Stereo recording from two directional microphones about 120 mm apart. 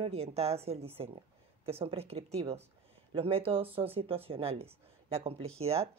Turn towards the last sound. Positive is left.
turn(degrees=-55)  # may be behind; listen again after turning